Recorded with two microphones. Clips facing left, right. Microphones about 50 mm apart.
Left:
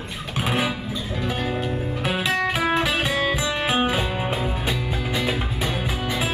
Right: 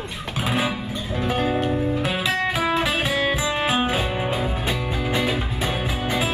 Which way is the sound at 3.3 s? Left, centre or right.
Right.